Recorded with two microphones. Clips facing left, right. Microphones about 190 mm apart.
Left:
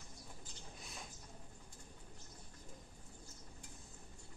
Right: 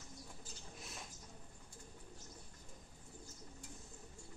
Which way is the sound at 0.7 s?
Centre (ahead or behind).